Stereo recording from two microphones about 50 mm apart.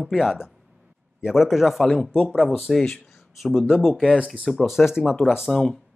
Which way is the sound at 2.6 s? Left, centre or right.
Centre.